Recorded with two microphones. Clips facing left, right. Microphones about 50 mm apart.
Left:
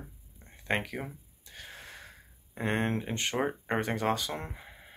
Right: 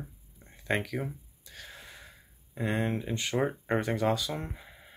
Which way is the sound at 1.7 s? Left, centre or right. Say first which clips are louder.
Left 2 dB; left.